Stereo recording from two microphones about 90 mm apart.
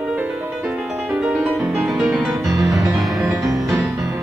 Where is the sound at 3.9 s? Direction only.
40° right (ahead or behind).